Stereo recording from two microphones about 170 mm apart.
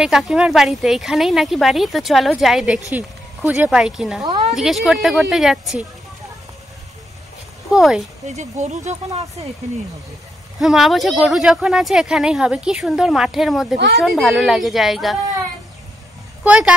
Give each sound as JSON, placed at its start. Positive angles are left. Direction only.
{"t": 0.0, "sound": "speech", "side_deg": -5}
{"t": 7.7, "sound": "speech", "side_deg": -5}
{"t": 8.3, "sound": "speech", "side_deg": -40}
{"t": 10.6, "sound": "speech", "side_deg": 0}
{"t": 16.4, "sound": "speech", "side_deg": -5}